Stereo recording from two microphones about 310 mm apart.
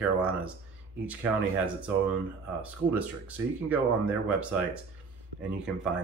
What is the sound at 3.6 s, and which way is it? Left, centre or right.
Speech, centre.